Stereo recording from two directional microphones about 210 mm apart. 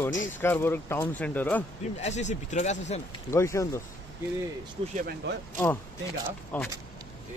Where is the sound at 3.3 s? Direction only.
15° left (ahead or behind).